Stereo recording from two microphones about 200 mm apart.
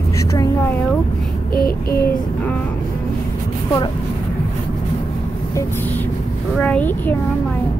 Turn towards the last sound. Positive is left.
turn(degrees=10)  # may be behind; listen again after turning